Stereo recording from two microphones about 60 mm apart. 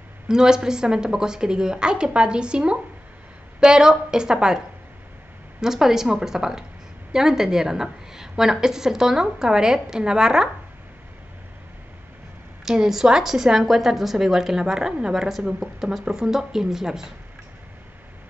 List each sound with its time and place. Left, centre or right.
0.3 s a woman's voice: centre
12.6 s a woman's voice: centre